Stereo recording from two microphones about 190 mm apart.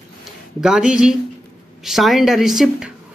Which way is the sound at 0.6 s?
5° right (ahead or behind).